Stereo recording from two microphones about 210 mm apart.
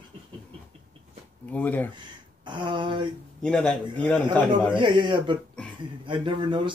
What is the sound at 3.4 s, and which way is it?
Speech, 5° left (ahead or behind).